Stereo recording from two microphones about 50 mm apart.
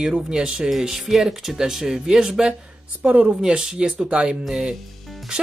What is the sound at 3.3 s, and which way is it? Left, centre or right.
Speech, centre.